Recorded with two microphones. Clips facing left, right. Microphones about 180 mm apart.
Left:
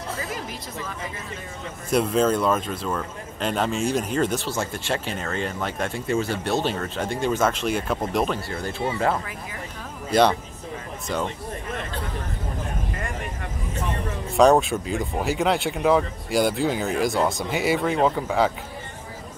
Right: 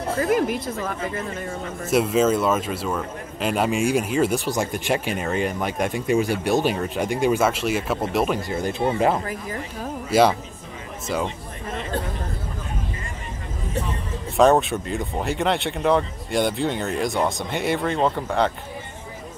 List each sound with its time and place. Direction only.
0.1 s speech: 55° right (ahead or behind)
1.9 s a man's voice: 5° right (ahead or behind)
8.4 s a man's voice: 15° right (ahead or behind)
9.2 s speech: 40° right (ahead or behind)
10.1 s a man's voice: 5° right (ahead or behind)
14.3 s speech: centre (ahead or behind)